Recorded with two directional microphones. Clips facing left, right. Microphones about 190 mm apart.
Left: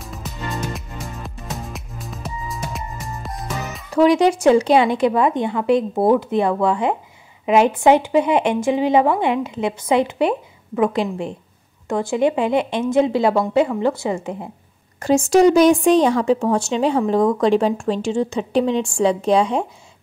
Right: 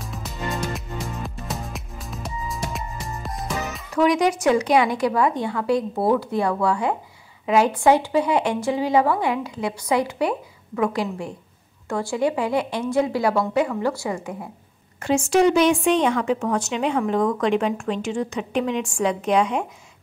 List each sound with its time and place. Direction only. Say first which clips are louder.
0.7 s music: right 2 dB; centre (ahead or behind)
3.9 s a woman's voice: left 5 dB; 30° left (ahead or behind)
15.0 s a woman's voice: left 4 dB; 40° left (ahead or behind)